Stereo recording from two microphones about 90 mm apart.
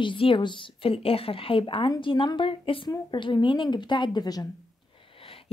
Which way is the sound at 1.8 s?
65° left (ahead or behind).